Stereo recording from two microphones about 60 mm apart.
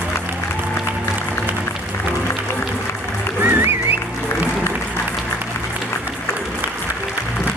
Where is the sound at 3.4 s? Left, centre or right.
Right.